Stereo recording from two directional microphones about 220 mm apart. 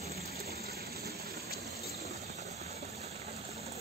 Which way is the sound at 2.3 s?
30° right (ahead or behind).